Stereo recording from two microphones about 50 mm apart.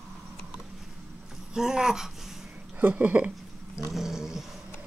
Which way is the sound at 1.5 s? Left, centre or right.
Centre.